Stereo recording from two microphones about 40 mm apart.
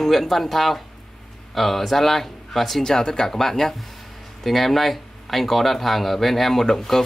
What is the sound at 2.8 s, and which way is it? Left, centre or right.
A man's voice, centre.